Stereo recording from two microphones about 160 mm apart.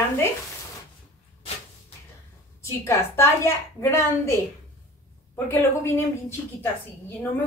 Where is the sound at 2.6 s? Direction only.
15° left (ahead or behind).